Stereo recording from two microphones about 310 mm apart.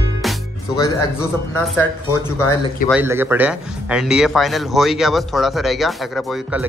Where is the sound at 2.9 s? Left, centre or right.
Centre.